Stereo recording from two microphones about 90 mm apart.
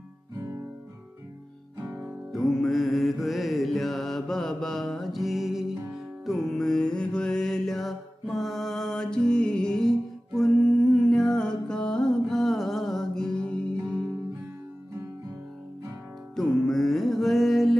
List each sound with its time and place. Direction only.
1.8 s guitar: 20° right (ahead or behind)
2.3 s mantra: 5° left (ahead or behind)
16.3 s music: 5° left (ahead or behind)